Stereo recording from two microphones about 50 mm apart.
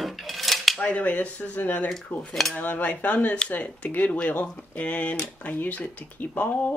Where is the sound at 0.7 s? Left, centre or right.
Left.